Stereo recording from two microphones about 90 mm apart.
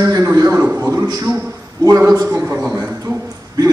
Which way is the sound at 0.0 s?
35° right (ahead or behind).